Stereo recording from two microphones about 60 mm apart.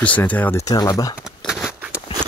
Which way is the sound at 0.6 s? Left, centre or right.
Left.